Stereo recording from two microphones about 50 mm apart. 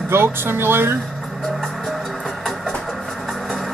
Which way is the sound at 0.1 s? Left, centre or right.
Right.